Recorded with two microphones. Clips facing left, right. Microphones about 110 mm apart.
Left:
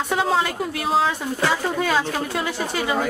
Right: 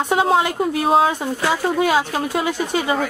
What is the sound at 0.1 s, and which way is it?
Speech, 20° right (ahead or behind).